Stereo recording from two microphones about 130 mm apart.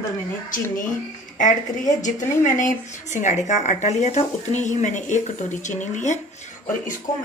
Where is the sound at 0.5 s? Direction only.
90° left.